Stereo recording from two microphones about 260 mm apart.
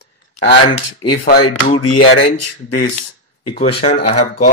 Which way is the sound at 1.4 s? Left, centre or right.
Left.